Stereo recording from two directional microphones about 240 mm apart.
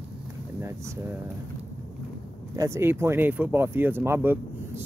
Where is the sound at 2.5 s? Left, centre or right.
Centre.